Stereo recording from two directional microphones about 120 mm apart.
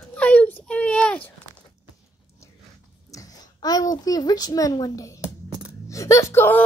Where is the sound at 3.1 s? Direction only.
30° left (ahead or behind).